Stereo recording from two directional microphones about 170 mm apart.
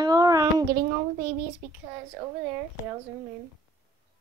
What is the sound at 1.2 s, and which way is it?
Speech, 55° right (ahead or behind).